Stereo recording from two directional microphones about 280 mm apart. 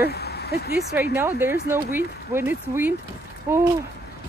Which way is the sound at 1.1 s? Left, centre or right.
Centre.